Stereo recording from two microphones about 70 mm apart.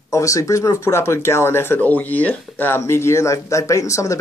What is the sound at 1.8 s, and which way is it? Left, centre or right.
Speech, left.